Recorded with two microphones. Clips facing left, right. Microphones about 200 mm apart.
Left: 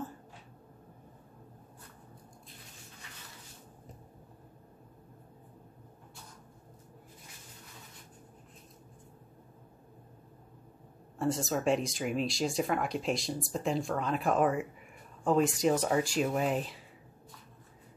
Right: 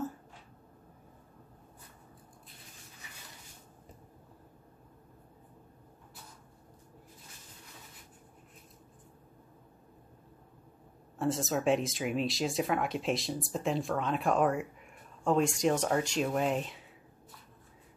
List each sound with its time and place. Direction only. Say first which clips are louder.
11.1 s speech: even; centre (ahead or behind)